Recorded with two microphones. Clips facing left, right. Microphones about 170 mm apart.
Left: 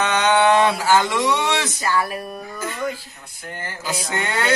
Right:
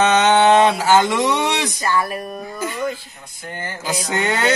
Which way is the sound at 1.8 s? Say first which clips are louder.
Right 1 dB; 5° left (ahead or behind).